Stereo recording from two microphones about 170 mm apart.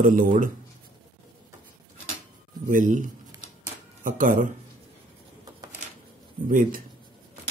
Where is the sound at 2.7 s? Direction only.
50° right (ahead or behind).